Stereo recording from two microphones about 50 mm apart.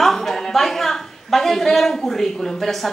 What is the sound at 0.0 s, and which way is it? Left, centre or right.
A woman's voice, centre.